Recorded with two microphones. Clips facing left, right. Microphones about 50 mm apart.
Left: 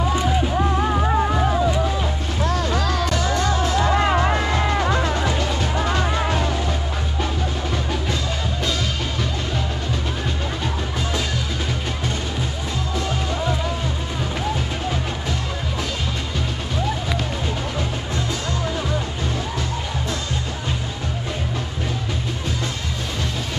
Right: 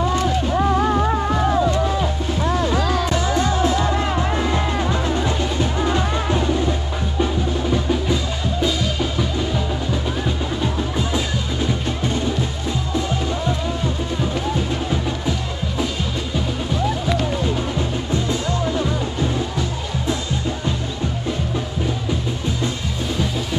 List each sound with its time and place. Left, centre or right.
0.1 s music: centre
0.6 s music: centre
2.4 s music: centre
3.8 s music: left
4.8 s music: left
6.0 s music: centre